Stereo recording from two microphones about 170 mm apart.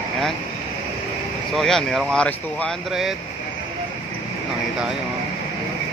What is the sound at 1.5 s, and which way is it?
Speech, centre (ahead or behind).